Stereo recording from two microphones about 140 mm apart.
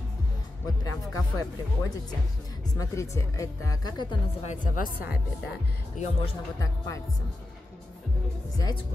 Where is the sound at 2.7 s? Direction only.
20° left (ahead or behind).